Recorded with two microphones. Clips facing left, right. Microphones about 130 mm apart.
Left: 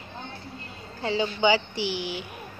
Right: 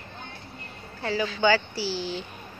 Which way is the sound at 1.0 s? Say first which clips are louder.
Even; 20° left (ahead or behind).